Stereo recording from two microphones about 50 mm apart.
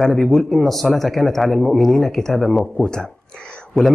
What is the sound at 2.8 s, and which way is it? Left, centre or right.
Speech, centre.